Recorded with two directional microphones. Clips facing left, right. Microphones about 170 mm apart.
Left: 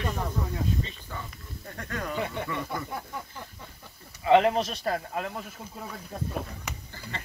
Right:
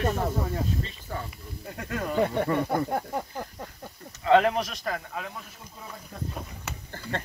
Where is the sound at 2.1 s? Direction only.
50° right (ahead or behind).